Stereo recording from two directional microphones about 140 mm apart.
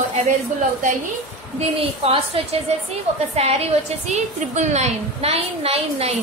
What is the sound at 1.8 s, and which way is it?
Speech, 45° right (ahead or behind).